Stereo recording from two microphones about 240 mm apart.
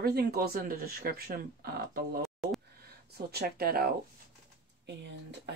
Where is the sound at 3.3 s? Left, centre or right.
Right.